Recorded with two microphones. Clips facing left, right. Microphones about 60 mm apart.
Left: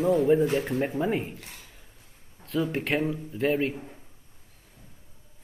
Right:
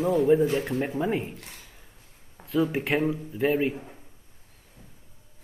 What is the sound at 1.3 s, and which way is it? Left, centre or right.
Speech, right.